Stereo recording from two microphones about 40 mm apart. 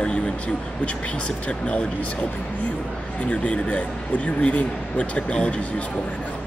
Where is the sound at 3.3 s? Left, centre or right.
Left.